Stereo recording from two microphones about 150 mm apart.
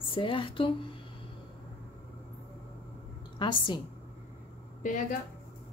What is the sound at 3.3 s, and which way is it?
Speech, 30° left (ahead or behind).